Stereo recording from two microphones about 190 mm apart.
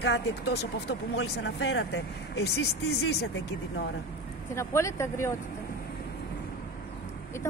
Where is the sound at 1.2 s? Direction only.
85° left.